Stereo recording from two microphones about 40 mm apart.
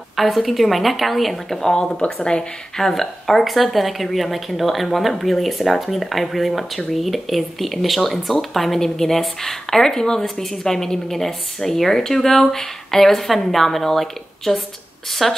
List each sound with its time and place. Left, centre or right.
0.1 s speech: centre
1.8 s speech: left
2.8 s speech: centre